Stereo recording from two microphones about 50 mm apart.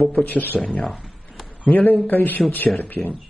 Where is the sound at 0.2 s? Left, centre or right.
Left.